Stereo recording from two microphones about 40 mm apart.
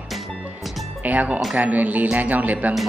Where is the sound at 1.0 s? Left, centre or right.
Right.